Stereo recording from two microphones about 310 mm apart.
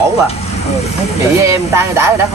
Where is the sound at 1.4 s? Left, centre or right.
Centre.